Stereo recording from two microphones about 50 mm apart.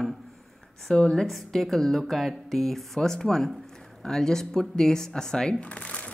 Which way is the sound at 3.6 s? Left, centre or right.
Centre.